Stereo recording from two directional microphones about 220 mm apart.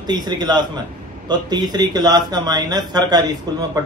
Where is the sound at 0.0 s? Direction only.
20° right (ahead or behind).